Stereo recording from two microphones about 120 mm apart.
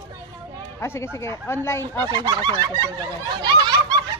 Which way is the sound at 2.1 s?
35° right (ahead or behind).